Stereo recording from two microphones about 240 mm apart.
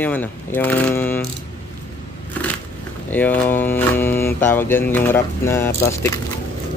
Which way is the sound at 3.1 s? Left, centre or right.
Centre.